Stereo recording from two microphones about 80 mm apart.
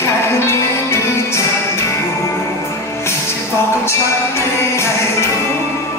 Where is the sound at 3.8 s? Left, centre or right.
Left.